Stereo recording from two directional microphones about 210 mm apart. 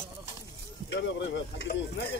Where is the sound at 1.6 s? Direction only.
50° left (ahead or behind).